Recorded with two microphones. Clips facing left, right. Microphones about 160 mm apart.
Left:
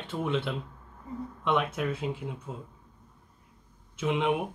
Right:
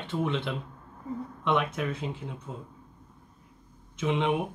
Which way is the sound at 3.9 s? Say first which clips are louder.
Even; 5° left (ahead or behind).